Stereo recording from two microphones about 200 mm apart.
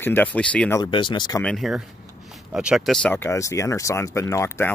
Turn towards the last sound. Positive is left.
turn(degrees=10)  # may be behind; listen again after turning